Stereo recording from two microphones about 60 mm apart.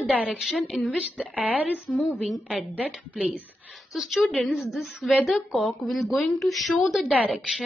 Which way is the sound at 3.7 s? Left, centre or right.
Centre.